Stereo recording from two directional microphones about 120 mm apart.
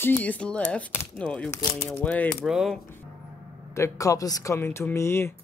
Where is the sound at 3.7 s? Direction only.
25° left (ahead or behind).